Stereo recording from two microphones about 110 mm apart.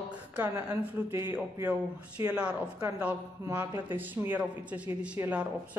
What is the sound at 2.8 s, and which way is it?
Speech, 15° right (ahead or behind).